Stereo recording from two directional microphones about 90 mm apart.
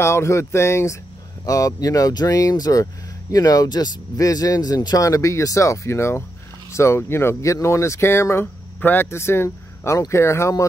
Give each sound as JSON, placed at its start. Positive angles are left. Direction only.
{"t": 0.0, "sound": "speech", "side_deg": 30}